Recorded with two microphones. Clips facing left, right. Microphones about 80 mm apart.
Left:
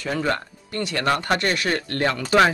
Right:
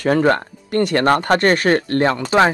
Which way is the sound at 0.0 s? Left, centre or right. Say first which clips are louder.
Right 9 dB; right.